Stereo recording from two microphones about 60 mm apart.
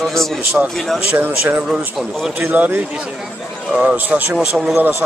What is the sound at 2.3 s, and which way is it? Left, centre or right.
Speech, right.